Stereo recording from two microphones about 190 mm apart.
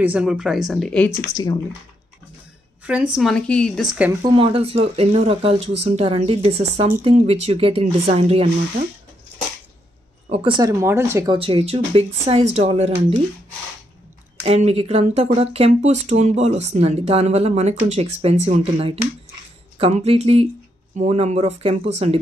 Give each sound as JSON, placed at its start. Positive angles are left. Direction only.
{"t": 0.0, "sound": "speech", "side_deg": -5}
{"t": 1.3, "sound": "speech", "side_deg": 20}
{"t": 3.2, "sound": "speech", "side_deg": 5}
{"t": 4.2, "sound": "speech", "side_deg": -25}
{"t": 10.3, "sound": "speech", "side_deg": -25}
{"t": 10.7, "sound": "speech", "side_deg": -15}
{"t": 11.3, "sound": "speech", "side_deg": -30}
{"t": 14.4, "sound": "speech", "side_deg": -35}